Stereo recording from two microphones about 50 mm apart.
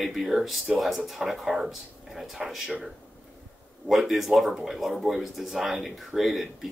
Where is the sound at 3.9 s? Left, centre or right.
Centre.